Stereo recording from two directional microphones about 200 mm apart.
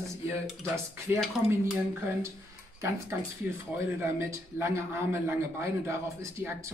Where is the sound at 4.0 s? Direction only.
10° right (ahead or behind).